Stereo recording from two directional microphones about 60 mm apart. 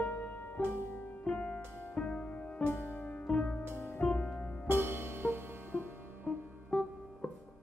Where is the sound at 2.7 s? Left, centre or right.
Left.